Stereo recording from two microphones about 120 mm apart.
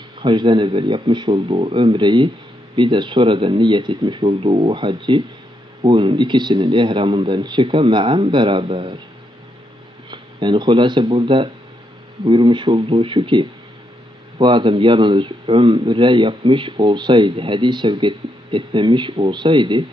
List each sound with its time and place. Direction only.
0.2 s speech: 40° right (ahead or behind)
10.1 s speech: 40° right (ahead or behind)